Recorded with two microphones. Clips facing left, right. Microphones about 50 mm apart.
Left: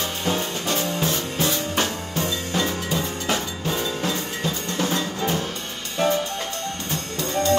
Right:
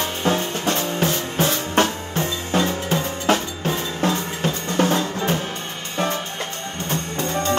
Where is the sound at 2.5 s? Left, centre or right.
Right.